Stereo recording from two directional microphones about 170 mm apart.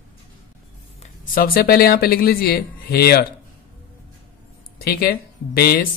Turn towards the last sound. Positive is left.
turn(degrees=65)  # may be behind; listen again after turning